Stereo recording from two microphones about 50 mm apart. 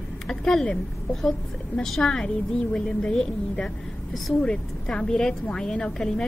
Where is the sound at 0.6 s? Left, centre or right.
Centre.